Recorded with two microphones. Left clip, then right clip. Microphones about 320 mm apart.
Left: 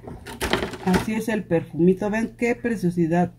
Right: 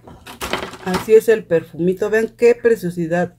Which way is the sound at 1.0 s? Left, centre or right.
Centre.